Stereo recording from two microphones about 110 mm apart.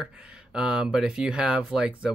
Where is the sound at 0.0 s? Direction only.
10° right (ahead or behind).